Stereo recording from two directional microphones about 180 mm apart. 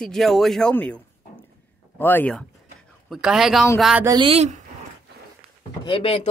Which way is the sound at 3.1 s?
5° right (ahead or behind).